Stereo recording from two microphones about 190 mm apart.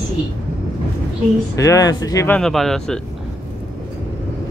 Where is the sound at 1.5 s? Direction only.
20° left (ahead or behind).